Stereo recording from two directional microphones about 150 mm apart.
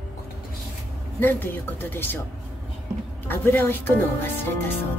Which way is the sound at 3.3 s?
15° left (ahead or behind).